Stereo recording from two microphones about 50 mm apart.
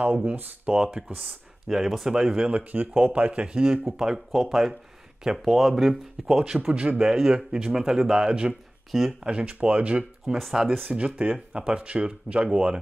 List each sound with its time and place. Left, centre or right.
0.0 s speech: right
0.8 s speech: centre
2.5 s speech: right; by 6.7 s centre
6.7 s speech: right
7.0 s speech: centre
10.2 s speech: centre
10.9 s speech: right